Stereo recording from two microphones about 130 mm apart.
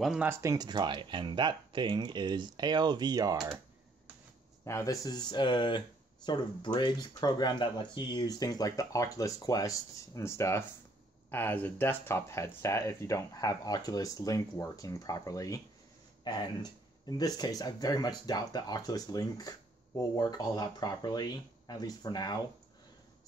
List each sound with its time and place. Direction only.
0.0 s speech: 5° right (ahead or behind)
0.3 s speech: 25° right (ahead or behind)
4.6 s speech: 25° left (ahead or behind)